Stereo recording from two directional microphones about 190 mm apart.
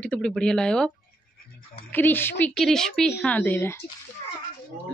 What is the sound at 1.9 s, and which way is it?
A woman's voice, 10° left (ahead or behind).